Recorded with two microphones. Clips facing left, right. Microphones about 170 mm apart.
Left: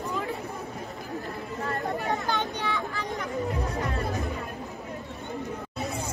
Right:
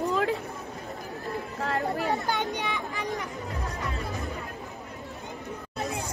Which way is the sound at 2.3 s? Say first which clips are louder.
Even; 15° right (ahead or behind).